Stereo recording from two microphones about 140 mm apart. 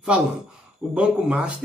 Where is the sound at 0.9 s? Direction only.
5° right (ahead or behind).